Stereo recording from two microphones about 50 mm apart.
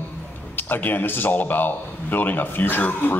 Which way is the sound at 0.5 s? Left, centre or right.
Left.